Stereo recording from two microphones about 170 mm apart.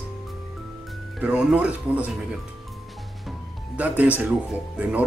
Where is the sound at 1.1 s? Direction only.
5° right (ahead or behind).